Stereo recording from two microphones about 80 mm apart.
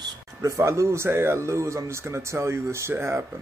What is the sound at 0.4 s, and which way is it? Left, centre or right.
Speech, right.